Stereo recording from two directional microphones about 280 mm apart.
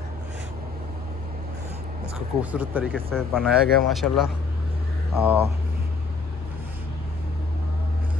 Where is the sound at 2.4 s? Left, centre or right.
Centre.